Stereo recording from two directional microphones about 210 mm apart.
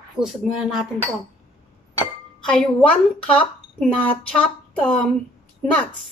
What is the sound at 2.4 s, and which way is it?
A woman's voice, 5° left (ahead or behind).